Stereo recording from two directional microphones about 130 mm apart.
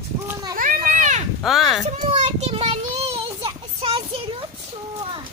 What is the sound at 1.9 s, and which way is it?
Child singing, 60° right (ahead or behind).